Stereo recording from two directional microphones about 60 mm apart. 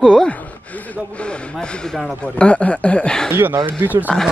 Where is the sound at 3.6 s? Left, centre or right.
Right.